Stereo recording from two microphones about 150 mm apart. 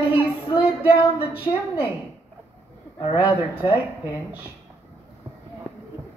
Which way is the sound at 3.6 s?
35° left (ahead or behind).